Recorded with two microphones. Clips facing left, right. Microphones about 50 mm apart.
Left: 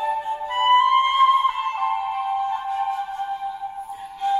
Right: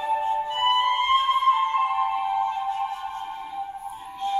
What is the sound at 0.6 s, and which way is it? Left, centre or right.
Flute, left.